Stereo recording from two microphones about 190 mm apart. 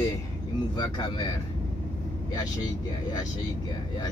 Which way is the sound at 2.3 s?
20° left (ahead or behind).